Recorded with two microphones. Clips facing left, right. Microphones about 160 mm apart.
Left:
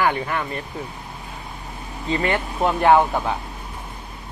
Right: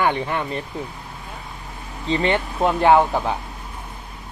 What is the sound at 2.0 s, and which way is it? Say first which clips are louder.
Speech: right 2 dB; 25° right (ahead or behind).